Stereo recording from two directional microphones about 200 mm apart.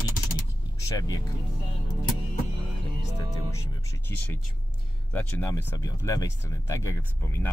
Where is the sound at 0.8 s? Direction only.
20° left (ahead or behind).